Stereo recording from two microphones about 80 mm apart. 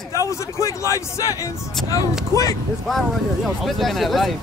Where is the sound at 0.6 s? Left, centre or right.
Left.